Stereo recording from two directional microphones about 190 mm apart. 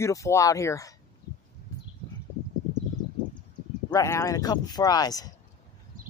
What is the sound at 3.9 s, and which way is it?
Speech, 15° left (ahead or behind).